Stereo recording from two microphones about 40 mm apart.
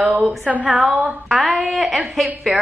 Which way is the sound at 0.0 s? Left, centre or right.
Right.